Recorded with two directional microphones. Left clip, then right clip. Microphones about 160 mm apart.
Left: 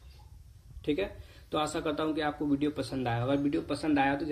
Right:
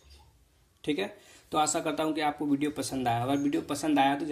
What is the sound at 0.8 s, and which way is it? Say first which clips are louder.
Speech: even; 45° right (ahead or behind).